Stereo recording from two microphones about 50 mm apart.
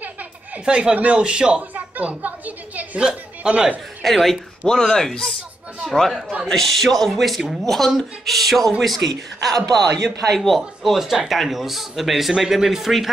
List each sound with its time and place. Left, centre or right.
0.7 s speech: centre
2.0 s a woman's voice: right
3.0 s a woman's voice: centre
4.0 s a man's voice: centre